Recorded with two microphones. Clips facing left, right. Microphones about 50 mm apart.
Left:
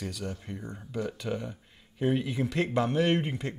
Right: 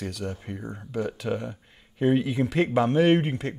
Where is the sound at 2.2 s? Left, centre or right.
Centre.